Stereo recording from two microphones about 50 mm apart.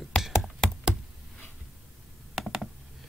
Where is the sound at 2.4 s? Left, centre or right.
Centre.